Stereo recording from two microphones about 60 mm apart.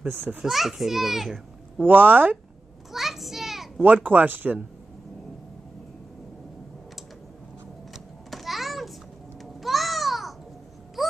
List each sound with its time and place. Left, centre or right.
0.1 s speech: right
0.4 s a child's voice: centre
1.8 s speech: right
2.9 s children playing: centre
3.8 s speech: right
7.9 s a sound: centre
9.4 s babbling: centre
11.0 s a sound: centre